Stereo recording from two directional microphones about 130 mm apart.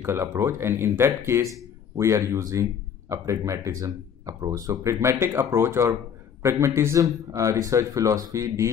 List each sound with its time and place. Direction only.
0.0 s speech: 20° right (ahead or behind)